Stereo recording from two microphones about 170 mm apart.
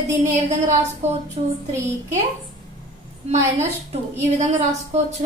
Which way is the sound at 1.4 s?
30° right (ahead or behind).